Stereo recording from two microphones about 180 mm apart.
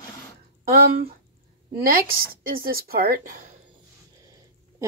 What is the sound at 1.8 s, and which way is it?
Speech, 55° right (ahead or behind).